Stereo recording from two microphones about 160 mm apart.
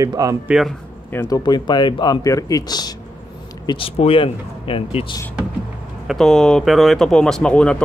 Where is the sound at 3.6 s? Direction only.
35° left (ahead or behind).